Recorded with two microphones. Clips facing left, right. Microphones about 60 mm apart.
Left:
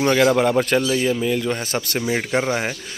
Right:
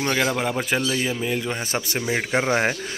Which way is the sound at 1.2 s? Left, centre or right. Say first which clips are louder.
Left 4 dB; centre.